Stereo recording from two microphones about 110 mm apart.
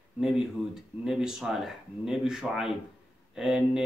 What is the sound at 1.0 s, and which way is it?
A man's voice, 5° right (ahead or behind).